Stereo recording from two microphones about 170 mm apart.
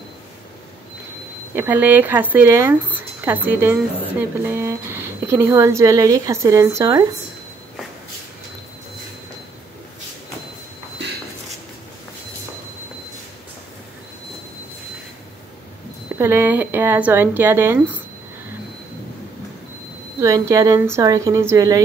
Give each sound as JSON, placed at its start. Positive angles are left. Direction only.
{"t": 1.5, "sound": "speech", "side_deg": -10}
{"t": 16.2, "sound": "speech", "side_deg": -15}
{"t": 20.2, "sound": "speech", "side_deg": -15}